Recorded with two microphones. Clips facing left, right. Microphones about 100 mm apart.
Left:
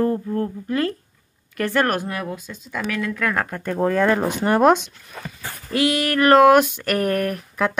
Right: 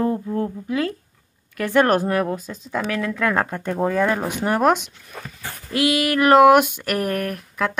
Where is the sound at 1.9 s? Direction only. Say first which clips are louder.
Right 6 dB; 35° right (ahead or behind).